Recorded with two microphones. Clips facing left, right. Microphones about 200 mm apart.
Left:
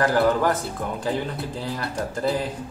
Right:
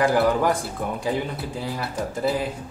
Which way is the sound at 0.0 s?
10° right (ahead or behind).